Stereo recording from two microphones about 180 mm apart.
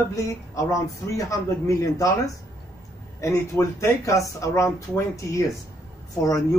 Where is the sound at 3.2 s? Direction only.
15° left (ahead or behind).